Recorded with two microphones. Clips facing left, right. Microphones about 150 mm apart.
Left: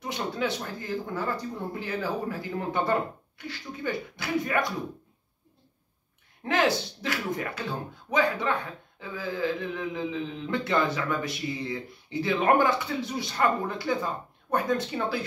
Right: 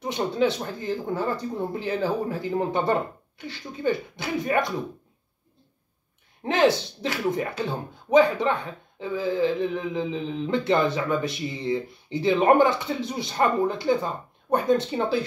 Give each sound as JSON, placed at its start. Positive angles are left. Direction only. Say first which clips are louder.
{"t": 0.0, "sound": "speech", "louder": "right 6 dB", "side_deg": -25}
{"t": 6.4, "sound": "speech", "louder": "right 4 dB", "side_deg": -25}
{"t": 9.0, "sound": "speech", "louder": "right 6 dB", "side_deg": -25}